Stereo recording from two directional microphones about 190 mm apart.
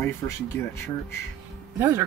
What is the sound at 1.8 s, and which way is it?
Speech, 15° right (ahead or behind).